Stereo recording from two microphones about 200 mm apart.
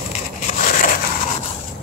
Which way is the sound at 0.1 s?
40° left (ahead or behind).